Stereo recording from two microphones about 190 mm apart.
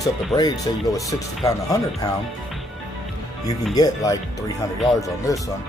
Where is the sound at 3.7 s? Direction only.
20° left (ahead or behind).